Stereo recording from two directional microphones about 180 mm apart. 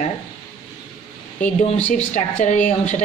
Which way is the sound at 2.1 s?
40° left (ahead or behind).